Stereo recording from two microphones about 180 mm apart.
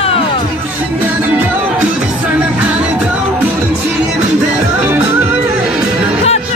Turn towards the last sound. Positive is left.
turn(degrees=-10)  # may be behind; listen again after turning